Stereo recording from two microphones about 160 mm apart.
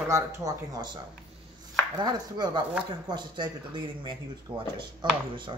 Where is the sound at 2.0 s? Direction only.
25° right (ahead or behind).